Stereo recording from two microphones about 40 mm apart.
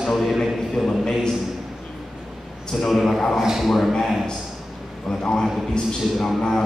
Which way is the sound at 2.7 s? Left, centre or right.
Centre.